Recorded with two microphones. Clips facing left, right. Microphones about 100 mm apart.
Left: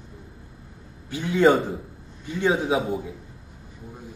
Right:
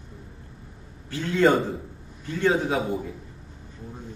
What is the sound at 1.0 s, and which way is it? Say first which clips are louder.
A man's voice: left 2 dB; 15° left (ahead or behind).